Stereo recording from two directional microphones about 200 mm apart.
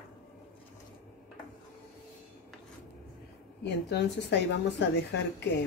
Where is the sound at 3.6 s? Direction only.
55° left (ahead or behind).